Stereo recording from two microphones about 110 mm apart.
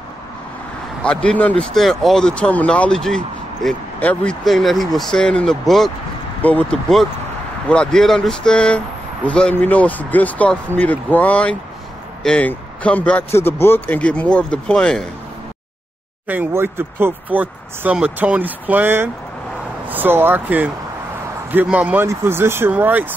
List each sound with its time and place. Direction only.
1.0 s speech: 10° left (ahead or behind)
16.3 s speech: 15° right (ahead or behind)